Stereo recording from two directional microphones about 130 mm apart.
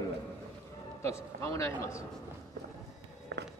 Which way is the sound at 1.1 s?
25° left (ahead or behind).